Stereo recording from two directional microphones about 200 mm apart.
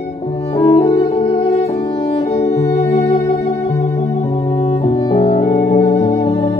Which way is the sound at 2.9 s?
25° left (ahead or behind).